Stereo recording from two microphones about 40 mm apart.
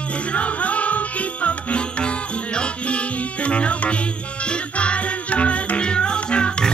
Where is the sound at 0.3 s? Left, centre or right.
Left.